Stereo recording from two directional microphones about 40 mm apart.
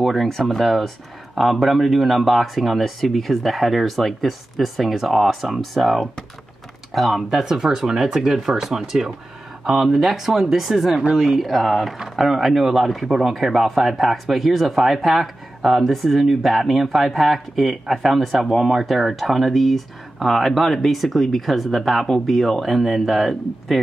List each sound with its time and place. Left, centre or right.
0.0 s speech: centre
7.4 s speech: centre
10.9 s speech: centre
11.1 s speech: centre